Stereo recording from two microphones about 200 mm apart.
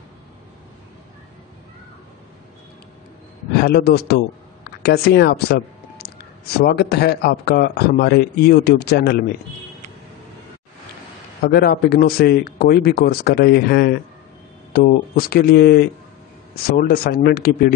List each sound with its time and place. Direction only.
3.6 s a man's voice: 55° left (ahead or behind)
11.4 s a man's voice: 50° left (ahead or behind)